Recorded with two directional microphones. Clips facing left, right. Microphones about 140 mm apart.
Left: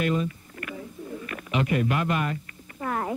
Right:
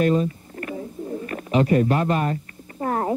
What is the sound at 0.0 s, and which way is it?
Bird, 35° right (ahead or behind).